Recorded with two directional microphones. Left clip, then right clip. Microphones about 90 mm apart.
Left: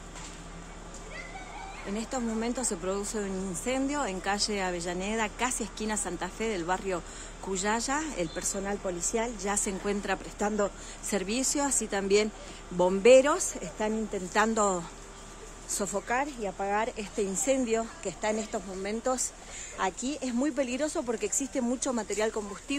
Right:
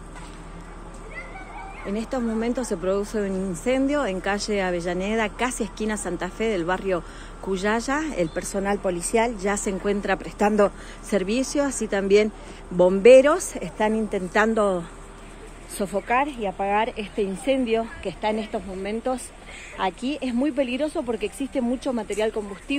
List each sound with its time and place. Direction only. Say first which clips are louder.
2.0 s a woman's voice: right 6 dB; 10° right (ahead or behind)
8.6 s speech: right 8 dB; 35° right (ahead or behind)
9.5 s speech: right 6 dB; 15° right (ahead or behind)
10.4 s speech: right 10 dB; 40° right (ahead or behind)
11.1 s a woman's voice: right 7 dB; 5° right (ahead or behind); by 14.2 s 20° right (ahead or behind)
14.5 s speech: right 6 dB; 5° left (ahead or behind)
16.1 s speech: right 9 dB; 20° right (ahead or behind)
16.9 s speech: right 5 dB; 10° left (ahead or behind)
20.3 s speech: right 6 dB; 10° left (ahead or behind)